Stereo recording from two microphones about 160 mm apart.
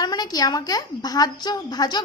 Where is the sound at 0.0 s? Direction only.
25° left (ahead or behind).